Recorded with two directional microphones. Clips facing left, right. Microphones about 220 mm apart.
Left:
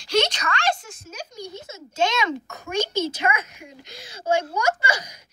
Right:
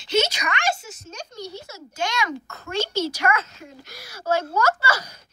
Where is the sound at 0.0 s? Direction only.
5° right (ahead or behind).